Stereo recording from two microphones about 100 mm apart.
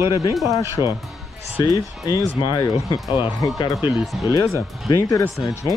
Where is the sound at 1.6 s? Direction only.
45° left (ahead or behind).